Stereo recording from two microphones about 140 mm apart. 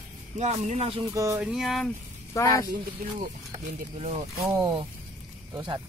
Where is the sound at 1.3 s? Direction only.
Centre (ahead or behind).